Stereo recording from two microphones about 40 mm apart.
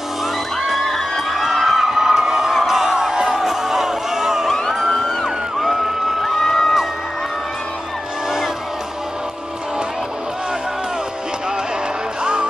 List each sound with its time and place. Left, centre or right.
0.6 s crowd: centre
3.4 s music: centre
12.2 s music: right